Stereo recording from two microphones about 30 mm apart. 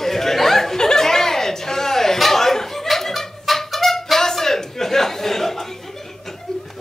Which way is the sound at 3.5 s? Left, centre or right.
Centre.